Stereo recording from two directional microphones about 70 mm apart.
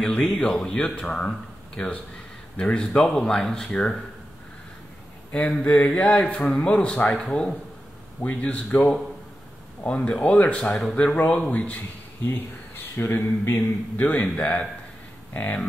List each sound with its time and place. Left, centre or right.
0.2 s a man's voice: centre
5.3 s a man's voice: centre